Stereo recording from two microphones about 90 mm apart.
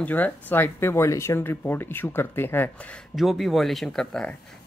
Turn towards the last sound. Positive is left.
turn(degrees=10)  # may be behind; listen again after turning